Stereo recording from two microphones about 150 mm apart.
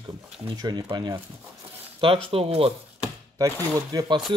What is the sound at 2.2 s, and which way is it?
Speech, 40° right (ahead or behind).